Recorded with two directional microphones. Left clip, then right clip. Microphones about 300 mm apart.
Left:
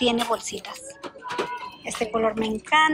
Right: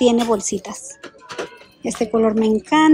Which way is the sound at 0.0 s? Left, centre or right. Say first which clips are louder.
Right 7 dB; centre.